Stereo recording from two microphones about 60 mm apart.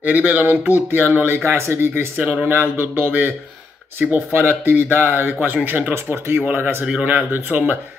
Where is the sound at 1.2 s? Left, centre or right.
Right.